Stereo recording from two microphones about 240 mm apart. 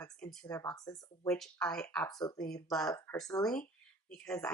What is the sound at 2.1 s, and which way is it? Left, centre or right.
Speech, centre.